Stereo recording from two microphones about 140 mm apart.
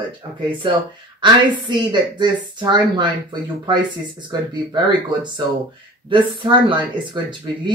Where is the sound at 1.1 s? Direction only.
35° right (ahead or behind).